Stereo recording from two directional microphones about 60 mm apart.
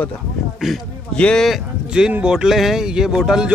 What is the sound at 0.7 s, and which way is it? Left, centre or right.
Speech, centre.